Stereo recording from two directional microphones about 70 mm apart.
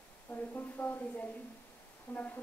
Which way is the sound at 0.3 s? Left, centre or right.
Left.